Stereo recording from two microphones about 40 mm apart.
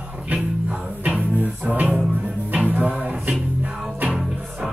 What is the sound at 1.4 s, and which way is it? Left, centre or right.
Music, right.